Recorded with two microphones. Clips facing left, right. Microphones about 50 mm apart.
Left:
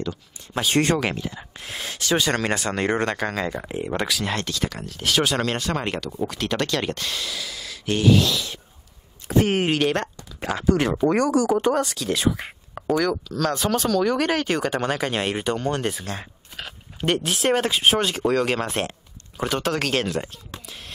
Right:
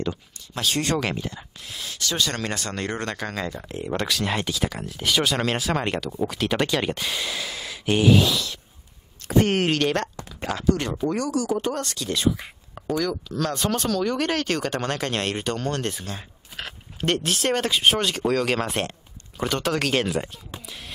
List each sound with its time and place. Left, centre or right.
1.1 s speech: centre
1.6 s a sound: left
2.0 s speech: left
4.1 s speech: centre
7.2 s a sound: right; by 8.4 s centre
9.3 s speech: centre
11.1 s speech: left
11.7 s speech: centre